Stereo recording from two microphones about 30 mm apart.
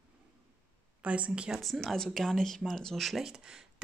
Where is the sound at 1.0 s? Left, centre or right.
Right.